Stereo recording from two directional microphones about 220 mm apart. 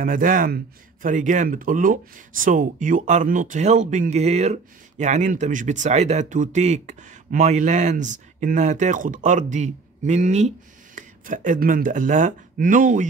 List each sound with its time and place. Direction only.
0.0 s speech: 40° right (ahead or behind)